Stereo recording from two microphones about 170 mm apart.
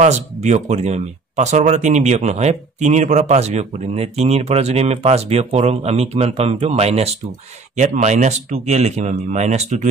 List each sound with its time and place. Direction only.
0.0 s speech: 40° right (ahead or behind)